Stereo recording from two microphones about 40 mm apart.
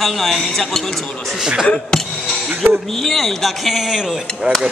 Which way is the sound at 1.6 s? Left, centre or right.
Left.